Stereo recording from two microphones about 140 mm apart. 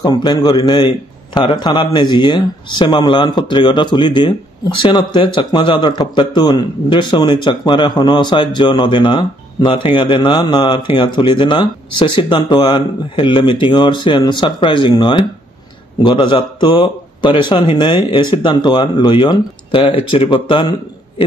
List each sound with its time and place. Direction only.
0.0 s a man's voice: 30° left (ahead or behind)